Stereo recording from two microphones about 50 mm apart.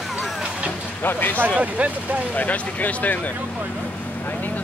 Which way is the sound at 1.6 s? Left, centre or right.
Right.